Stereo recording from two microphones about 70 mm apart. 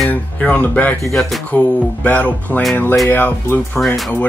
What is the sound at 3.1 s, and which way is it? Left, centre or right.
Speech, left.